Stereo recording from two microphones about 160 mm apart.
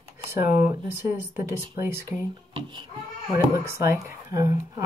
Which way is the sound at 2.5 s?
30° right (ahead or behind).